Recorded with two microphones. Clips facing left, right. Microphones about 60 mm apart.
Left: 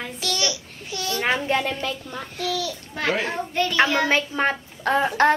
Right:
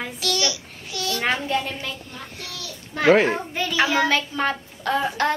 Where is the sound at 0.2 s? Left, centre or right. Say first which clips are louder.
Right 1 dB; left.